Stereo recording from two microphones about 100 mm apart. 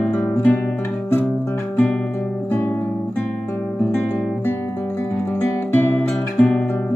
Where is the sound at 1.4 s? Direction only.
20° left (ahead or behind).